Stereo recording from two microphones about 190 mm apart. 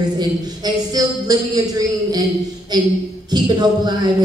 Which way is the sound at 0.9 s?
20° right (ahead or behind).